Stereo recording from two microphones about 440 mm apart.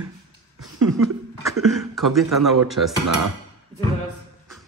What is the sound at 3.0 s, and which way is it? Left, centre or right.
Speech, right.